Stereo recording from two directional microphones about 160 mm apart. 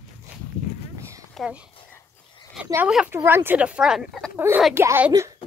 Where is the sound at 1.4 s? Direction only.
Centre (ahead or behind).